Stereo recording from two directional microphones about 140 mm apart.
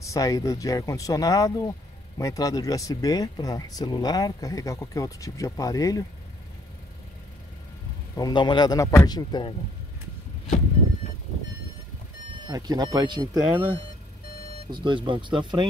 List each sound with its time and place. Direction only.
0.0 s speech: 25° left (ahead or behind)
8.2 s speech: 35° left (ahead or behind)
12.4 s speech: 30° right (ahead or behind)
14.7 s speech: 35° right (ahead or behind)